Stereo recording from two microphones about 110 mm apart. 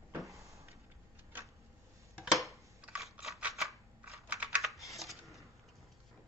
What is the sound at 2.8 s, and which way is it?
Computer keyboard, 10° right (ahead or behind).